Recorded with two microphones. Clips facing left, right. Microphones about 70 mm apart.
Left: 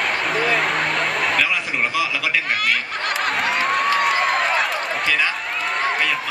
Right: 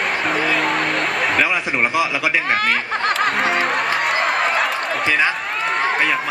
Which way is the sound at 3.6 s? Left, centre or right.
Centre.